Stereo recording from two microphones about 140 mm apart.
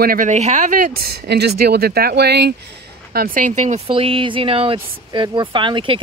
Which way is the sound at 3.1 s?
85° right.